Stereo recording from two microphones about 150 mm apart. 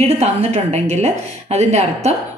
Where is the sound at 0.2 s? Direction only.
45° right (ahead or behind).